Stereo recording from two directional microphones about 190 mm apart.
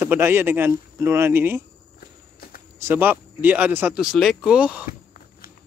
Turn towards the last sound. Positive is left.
turn(degrees=-5)  # may be behind; listen again after turning